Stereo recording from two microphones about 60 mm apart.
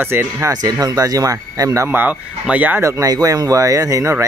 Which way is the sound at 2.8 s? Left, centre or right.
Right.